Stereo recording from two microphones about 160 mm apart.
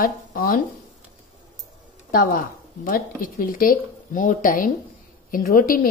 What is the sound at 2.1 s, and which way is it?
Speech, 60° left (ahead or behind).